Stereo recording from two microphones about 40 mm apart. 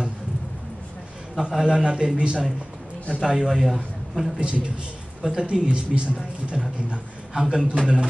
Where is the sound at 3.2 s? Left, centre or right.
Centre.